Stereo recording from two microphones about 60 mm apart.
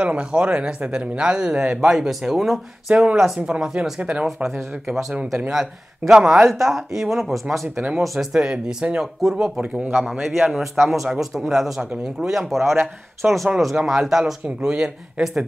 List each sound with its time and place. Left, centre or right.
0.0 s speech: right; by 2.6 s centre
2.9 s speech: centre
4.4 s a man's voice: centre
8.3 s a man's voice: centre
14.7 s speech: centre